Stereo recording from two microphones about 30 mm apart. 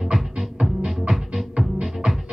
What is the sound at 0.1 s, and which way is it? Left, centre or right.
Music, centre.